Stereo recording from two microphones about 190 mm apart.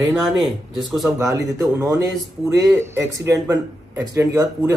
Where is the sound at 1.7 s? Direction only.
15° right (ahead or behind).